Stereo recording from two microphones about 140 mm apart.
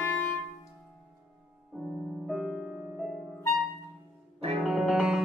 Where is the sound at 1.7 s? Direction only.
Centre (ahead or behind).